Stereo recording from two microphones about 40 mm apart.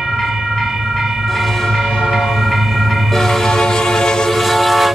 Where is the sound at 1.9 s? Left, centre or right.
Centre.